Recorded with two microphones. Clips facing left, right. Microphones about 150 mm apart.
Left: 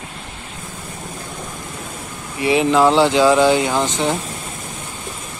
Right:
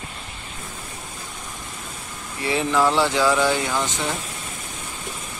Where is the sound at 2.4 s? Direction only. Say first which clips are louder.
Left 6 dB; 15° left (ahead or behind).